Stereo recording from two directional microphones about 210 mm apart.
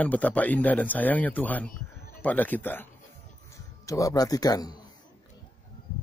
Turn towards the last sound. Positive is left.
turn(degrees=20)  # may be behind; listen again after turning